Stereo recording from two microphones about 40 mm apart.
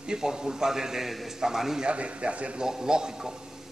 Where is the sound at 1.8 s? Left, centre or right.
Right.